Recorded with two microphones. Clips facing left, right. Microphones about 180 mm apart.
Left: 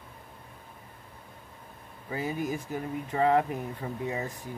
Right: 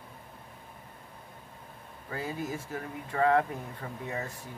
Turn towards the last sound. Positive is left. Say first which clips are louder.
# left 4 dB
turn(degrees=15)  # may be behind; listen again after turning